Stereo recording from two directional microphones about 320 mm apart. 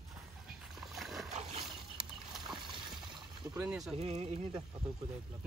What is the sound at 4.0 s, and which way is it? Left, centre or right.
Speech, centre.